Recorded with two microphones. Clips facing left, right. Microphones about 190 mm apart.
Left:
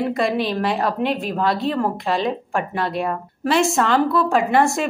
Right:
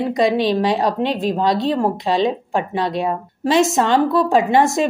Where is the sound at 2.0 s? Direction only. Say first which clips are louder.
Right 4 dB; 20° right (ahead or behind).